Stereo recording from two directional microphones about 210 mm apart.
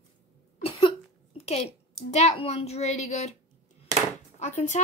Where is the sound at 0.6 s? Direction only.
25° left (ahead or behind).